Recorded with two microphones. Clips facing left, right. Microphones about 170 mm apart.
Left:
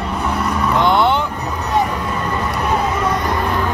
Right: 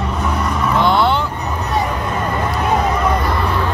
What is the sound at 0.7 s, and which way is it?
Vehicle, 20° left (ahead or behind).